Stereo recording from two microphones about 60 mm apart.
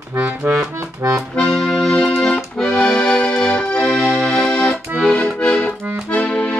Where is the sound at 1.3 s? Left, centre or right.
Centre.